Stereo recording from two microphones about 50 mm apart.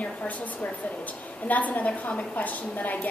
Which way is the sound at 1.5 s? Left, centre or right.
Left.